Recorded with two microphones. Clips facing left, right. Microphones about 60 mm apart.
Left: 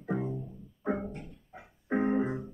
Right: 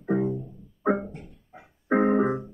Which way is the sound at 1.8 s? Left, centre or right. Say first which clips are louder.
Right 7 dB; right.